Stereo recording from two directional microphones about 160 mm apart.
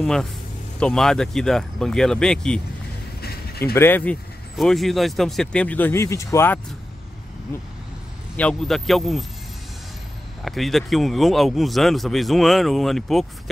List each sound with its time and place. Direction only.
0.0 s a man's voice: 5° left (ahead or behind)
3.2 s a sound: 75° left (ahead or behind)
3.7 s speech: 15° left (ahead or behind)
8.4 s a man's voice: 5° left (ahead or behind)
10.4 s a man's voice: centre (ahead or behind)